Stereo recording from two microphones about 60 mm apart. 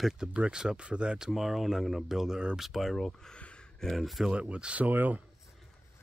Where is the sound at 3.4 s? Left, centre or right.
Centre.